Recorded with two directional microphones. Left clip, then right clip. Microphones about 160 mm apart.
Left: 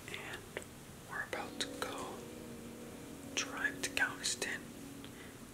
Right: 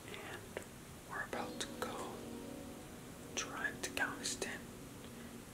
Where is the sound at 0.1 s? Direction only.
Centre (ahead or behind).